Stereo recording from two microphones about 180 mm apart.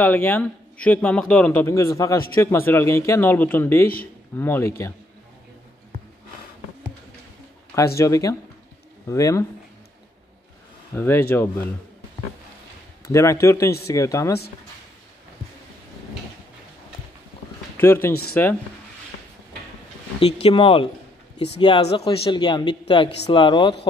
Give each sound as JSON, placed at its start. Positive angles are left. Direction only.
{"t": 0.0, "sound": "a man's voice", "side_deg": 10}
{"t": 8.0, "sound": "a man's voice", "side_deg": 20}
{"t": 11.0, "sound": "a man's voice", "side_deg": 15}
{"t": 13.0, "sound": "a man's voice", "side_deg": 15}
{"t": 17.7, "sound": "a man's voice", "side_deg": 10}
{"t": 20.2, "sound": "speech", "side_deg": 35}